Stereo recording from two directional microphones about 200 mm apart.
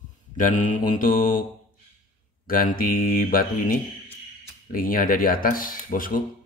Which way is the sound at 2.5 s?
45° left (ahead or behind).